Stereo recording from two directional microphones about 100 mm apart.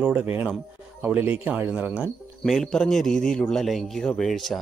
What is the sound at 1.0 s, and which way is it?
Speech, 20° right (ahead or behind).